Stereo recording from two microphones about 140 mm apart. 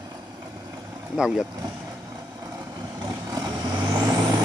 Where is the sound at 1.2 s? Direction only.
5° right (ahead or behind).